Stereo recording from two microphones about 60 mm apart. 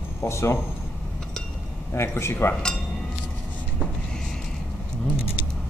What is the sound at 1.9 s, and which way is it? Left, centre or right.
Speech, left.